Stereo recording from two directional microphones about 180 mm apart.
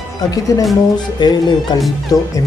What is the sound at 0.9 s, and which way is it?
Speech, 25° left (ahead or behind).